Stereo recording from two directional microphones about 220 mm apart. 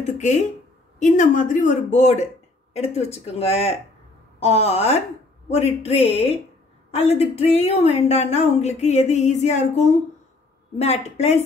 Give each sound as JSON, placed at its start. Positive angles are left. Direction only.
{"t": 0.0, "sound": "a man's voice", "side_deg": 30}